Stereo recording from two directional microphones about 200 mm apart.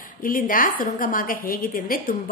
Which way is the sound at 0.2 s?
45° left (ahead or behind).